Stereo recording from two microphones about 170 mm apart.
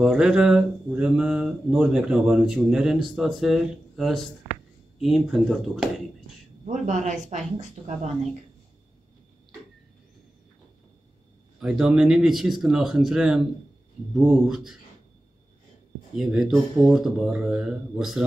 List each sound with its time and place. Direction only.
0.0 s speech: 5° right (ahead or behind)
6.6 s a woman's voice: 45° right (ahead or behind)
11.6 s speech: 5° right (ahead or behind)
16.2 s speech: centre (ahead or behind)